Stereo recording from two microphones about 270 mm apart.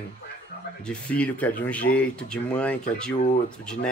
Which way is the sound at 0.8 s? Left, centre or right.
Centre.